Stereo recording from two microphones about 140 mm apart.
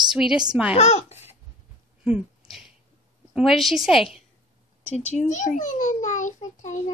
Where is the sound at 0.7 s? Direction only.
50° left (ahead or behind).